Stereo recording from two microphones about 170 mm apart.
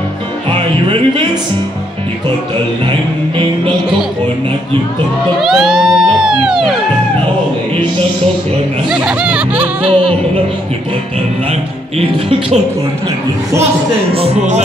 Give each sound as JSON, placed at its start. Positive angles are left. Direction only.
{"t": 0.5, "sound": "music", "side_deg": -30}
{"t": 2.9, "sound": "music", "side_deg": -30}
{"t": 5.4, "sound": "speech", "side_deg": 0}
{"t": 8.8, "sound": "speech", "side_deg": -5}
{"t": 9.8, "sound": "music", "side_deg": -30}
{"t": 12.0, "sound": "music", "side_deg": -35}
{"t": 14.1, "sound": "music", "side_deg": -40}